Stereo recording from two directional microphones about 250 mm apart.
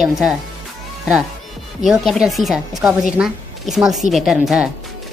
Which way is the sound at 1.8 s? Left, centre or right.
Centre.